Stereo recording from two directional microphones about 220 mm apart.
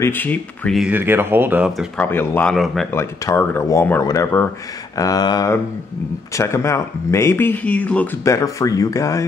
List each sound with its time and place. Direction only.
0.0 s speech: 10° left (ahead or behind)
2.0 s speech: 10° left (ahead or behind)
2.9 s speech: 10° left (ahead or behind)